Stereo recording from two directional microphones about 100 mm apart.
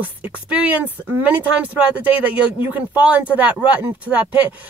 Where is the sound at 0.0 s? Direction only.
15° right (ahead or behind).